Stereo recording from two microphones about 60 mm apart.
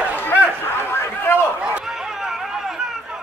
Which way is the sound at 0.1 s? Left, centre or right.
Left.